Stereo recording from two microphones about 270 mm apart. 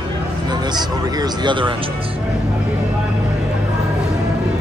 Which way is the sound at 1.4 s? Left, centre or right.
Centre.